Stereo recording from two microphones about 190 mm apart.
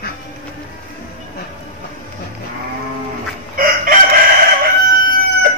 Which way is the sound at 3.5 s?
45° right (ahead or behind).